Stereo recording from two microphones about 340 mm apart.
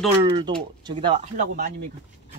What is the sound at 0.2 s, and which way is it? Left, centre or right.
Speech, centre.